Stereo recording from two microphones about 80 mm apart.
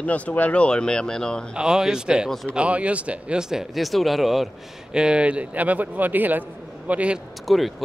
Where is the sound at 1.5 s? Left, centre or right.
Centre.